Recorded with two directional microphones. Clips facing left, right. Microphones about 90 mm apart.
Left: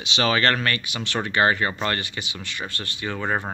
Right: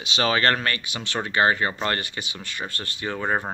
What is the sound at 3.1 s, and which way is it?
Speech, 15° right (ahead or behind).